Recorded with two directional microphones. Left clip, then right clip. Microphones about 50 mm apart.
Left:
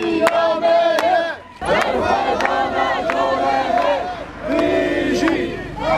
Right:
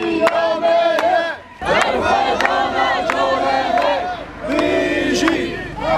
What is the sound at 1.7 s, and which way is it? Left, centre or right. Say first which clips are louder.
Crowd: right 1 dB; right.